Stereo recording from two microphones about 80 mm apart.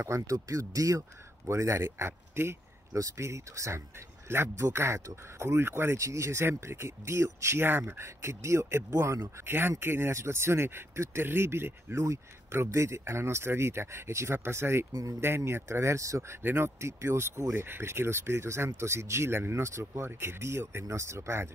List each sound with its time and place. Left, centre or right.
0.0 s speech: right
14.9 s speech: right
15.1 s speech: right